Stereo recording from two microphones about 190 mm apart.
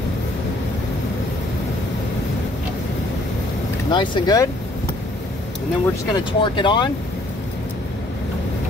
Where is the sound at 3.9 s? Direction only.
25° left (ahead or behind).